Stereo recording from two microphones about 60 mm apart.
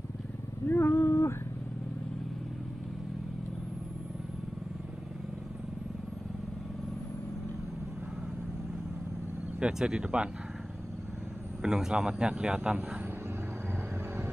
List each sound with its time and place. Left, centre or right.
0.7 s cat: left
9.6 s a man's voice: centre
11.6 s a man's voice: centre